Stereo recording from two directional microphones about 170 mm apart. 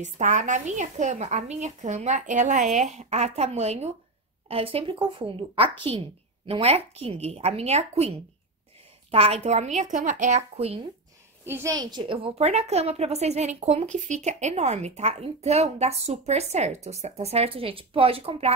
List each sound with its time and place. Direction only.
0.0 s speech: 45° right (ahead or behind)
11.4 s a woman's voice: 15° right (ahead or behind)
11.7 s speech: 25° right (ahead or behind)